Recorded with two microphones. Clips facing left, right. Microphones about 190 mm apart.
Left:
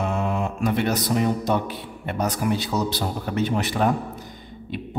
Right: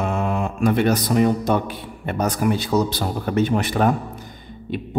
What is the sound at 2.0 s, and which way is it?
A man's voice, 50° right (ahead or behind).